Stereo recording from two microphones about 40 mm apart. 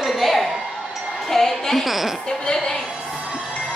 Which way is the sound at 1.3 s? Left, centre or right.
Centre.